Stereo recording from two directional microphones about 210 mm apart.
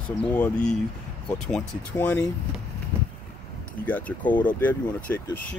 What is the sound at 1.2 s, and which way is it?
Speech, 5° left (ahead or behind).